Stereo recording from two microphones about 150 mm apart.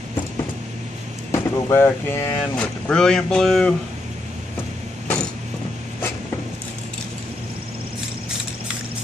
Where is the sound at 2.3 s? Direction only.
5° left (ahead or behind).